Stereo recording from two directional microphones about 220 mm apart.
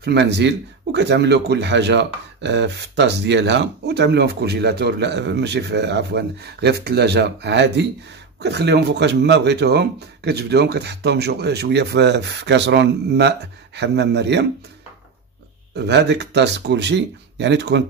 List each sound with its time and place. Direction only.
0.0 s speech: 50° right (ahead or behind)
15.7 s speech: 50° right (ahead or behind)